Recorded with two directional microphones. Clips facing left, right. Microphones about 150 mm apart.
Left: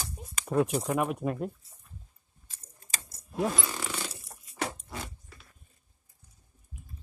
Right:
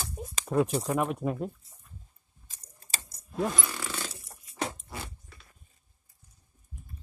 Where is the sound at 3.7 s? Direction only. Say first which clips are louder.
Left 1 dB; 15° left (ahead or behind).